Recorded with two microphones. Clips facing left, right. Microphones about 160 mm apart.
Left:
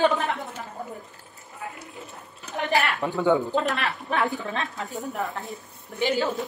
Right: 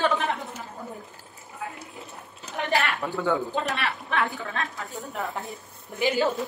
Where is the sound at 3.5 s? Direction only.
40° left (ahead or behind).